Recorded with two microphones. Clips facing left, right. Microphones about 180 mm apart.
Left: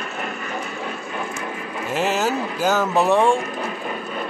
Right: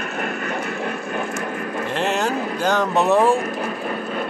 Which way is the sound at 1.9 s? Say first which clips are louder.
Left 1 dB; 5° left (ahead or behind).